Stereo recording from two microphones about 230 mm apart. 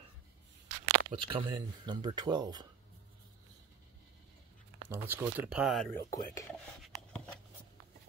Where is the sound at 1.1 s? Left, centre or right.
Right.